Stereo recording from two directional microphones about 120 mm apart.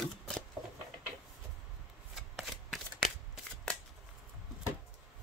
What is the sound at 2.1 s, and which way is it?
Shuffling cards, centre (ahead or behind).